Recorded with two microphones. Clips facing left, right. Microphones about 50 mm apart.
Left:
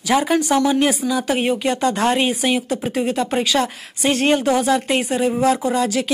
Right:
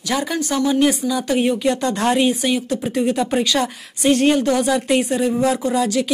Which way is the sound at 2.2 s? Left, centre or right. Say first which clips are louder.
Right 1 dB; centre.